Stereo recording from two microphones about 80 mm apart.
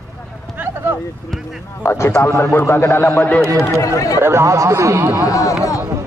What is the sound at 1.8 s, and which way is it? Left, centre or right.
A man's voice, left.